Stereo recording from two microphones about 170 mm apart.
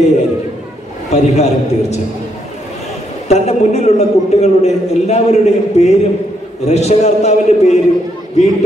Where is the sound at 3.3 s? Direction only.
40° left (ahead or behind).